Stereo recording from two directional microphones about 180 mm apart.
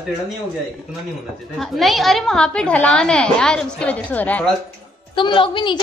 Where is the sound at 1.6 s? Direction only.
Centre (ahead or behind).